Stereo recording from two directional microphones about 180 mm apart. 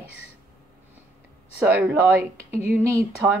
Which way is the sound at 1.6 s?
10° right (ahead or behind).